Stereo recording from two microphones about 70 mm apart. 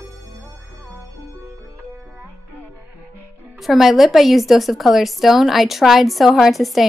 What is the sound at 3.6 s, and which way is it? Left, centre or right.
A woman's voice, centre.